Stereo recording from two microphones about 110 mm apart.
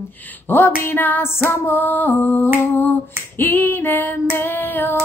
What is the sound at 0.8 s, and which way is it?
Child singing, 15° left (ahead or behind).